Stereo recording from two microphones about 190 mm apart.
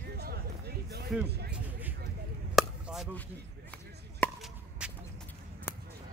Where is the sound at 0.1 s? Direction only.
55° right (ahead or behind).